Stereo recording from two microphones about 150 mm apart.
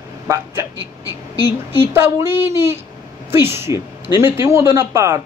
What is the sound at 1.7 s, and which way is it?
Speech, 15° right (ahead or behind).